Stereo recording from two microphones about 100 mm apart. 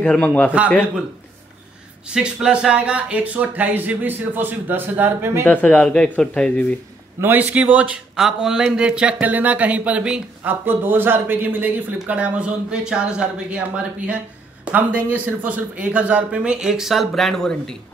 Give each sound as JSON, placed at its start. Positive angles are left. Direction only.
{"t": 0.0, "sound": "speech", "side_deg": 10}
{"t": 2.0, "sound": "a man's voice", "side_deg": -10}
{"t": 5.5, "sound": "speech", "side_deg": 15}
{"t": 7.2, "sound": "a man's voice", "side_deg": -20}